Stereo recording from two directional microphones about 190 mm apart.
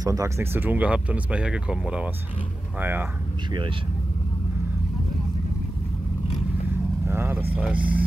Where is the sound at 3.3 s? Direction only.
25° right (ahead or behind).